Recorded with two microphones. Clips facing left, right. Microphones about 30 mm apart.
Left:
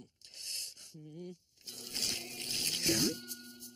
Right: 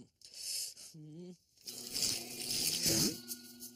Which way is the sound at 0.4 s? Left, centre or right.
Centre.